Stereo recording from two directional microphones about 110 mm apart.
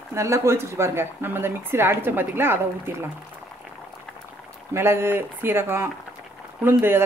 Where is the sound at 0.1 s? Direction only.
25° right (ahead or behind).